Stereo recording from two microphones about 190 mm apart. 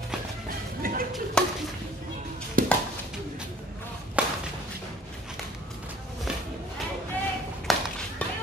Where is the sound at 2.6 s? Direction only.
45° right (ahead or behind).